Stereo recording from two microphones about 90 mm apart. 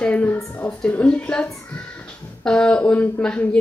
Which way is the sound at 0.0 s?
15° left (ahead or behind).